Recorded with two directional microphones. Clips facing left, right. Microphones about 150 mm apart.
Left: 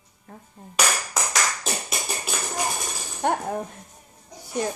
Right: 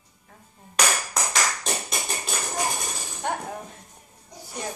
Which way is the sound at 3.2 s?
55° left (ahead or behind).